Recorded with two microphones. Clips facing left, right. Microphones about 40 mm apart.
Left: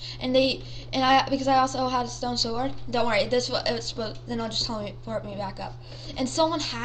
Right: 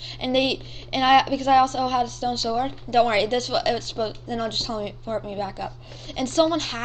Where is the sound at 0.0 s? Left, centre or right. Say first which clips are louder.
Even; right.